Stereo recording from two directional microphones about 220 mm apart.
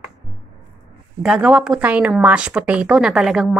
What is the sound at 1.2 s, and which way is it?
A woman's voice, 5° right (ahead or behind).